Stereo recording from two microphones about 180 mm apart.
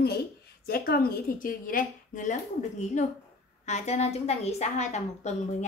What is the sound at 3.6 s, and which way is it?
A woman's voice, 40° left (ahead or behind).